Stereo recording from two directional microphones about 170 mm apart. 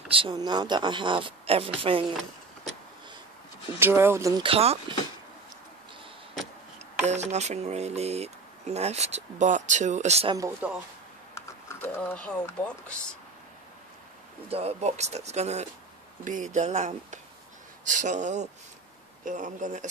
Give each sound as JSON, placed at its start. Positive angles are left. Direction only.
{"t": 0.1, "sound": "speech", "side_deg": -30}
{"t": 3.8, "sound": "speech", "side_deg": -15}
{"t": 4.4, "sound": "speech", "side_deg": -35}
{"t": 7.0, "sound": "speech", "side_deg": -40}
{"t": 10.6, "sound": "speech", "side_deg": -10}
{"t": 11.3, "sound": "speech", "side_deg": 15}
{"t": 14.5, "sound": "speech", "side_deg": -40}